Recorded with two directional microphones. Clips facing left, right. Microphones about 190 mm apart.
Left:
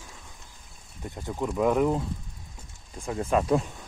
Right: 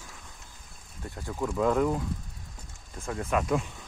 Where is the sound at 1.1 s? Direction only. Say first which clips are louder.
Left 1 dB; 20° left (ahead or behind).